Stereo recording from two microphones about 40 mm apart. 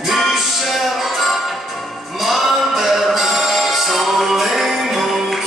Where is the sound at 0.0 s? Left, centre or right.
Centre.